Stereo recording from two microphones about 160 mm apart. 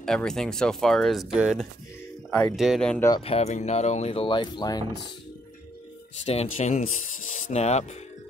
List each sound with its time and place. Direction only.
0.0 s speech: 5° left (ahead or behind)
3.2 s speech: 40° left (ahead or behind)
6.2 s speech: 40° left (ahead or behind)